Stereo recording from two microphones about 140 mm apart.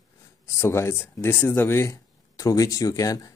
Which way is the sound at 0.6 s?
20° left (ahead or behind).